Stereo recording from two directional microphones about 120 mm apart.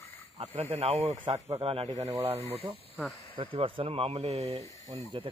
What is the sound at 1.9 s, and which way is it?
Speech, 65° right (ahead or behind).